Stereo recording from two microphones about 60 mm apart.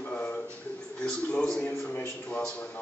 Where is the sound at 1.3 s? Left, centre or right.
Centre.